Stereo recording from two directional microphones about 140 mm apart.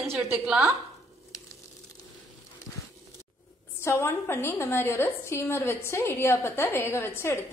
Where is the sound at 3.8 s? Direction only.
20° left (ahead or behind).